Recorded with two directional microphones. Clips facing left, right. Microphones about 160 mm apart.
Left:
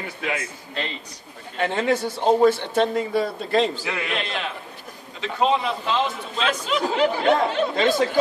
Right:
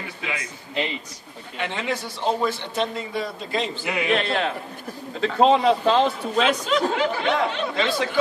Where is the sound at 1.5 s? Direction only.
45° left (ahead or behind).